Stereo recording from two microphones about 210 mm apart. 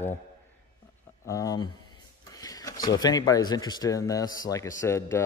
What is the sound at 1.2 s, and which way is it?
Speech, 15° left (ahead or behind).